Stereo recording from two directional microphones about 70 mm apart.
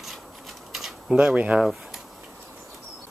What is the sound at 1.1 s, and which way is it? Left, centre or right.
Speech, centre.